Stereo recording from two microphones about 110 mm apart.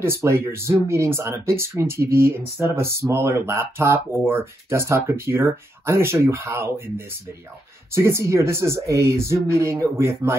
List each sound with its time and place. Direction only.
0.0 s speech: 25° right (ahead or behind)